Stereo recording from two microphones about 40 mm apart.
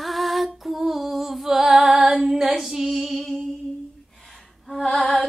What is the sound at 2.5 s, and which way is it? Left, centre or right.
Lullaby, centre.